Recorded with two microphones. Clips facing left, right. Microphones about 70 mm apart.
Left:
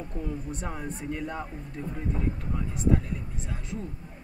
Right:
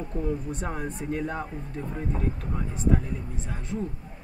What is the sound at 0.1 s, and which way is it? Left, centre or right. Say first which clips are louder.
Speech: right 7 dB; right.